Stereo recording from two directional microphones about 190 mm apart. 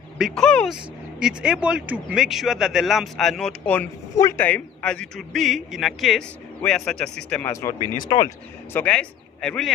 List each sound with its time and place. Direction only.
0.2 s a man's voice: 5° left (ahead or behind)
7.6 s speech: 15° left (ahead or behind)
8.7 s a man's voice: 5° left (ahead or behind)